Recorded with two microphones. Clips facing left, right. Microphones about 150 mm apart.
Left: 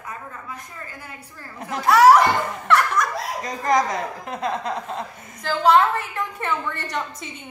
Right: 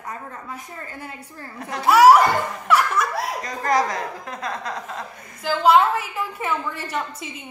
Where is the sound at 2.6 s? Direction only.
5° right (ahead or behind).